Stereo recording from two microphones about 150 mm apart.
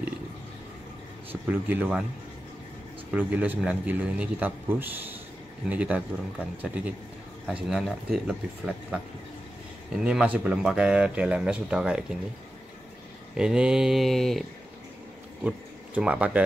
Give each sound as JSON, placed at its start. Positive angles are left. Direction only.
{"t": 1.3, "sound": "speech", "side_deg": -10}
{"t": 3.1, "sound": "speech", "side_deg": -10}
{"t": 9.9, "sound": "speech", "side_deg": -5}
{"t": 13.4, "sound": "speech", "side_deg": -5}
{"t": 15.4, "sound": "speech", "side_deg": -10}